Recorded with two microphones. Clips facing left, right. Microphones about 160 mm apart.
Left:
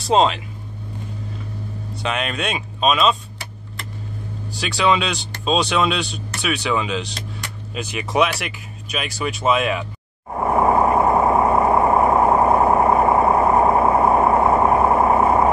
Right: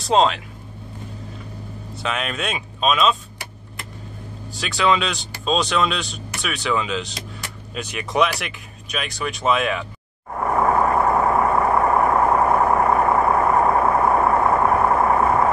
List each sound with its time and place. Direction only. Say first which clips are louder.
0.0 s speech: left 1 dB; centre (ahead or behind)
2.0 s speech: left 2 dB; centre (ahead or behind)
4.5 s speech: left 1 dB; centre (ahead or behind)
10.4 s vehicle: left 2 dB; 20° left (ahead or behind)